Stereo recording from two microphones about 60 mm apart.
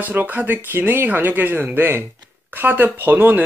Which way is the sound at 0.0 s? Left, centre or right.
Right.